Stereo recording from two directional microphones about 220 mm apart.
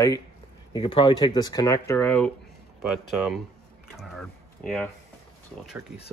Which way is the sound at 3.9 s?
Centre (ahead or behind).